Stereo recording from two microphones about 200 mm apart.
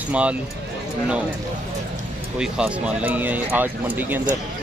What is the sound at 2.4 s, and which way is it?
Speech, 5° right (ahead or behind).